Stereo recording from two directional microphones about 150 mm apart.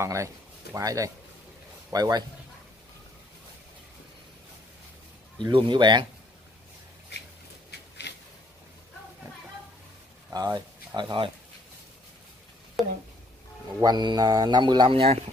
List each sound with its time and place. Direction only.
0.0 s a man's voice: 20° right (ahead or behind)
5.4 s speech: 35° right (ahead or behind)
10.3 s a man's voice: 25° right (ahead or behind)
12.8 s speech: centre (ahead or behind)
13.7 s a man's voice: 25° right (ahead or behind)